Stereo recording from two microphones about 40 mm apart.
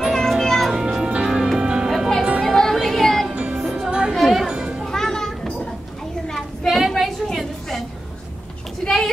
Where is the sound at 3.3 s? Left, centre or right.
Right.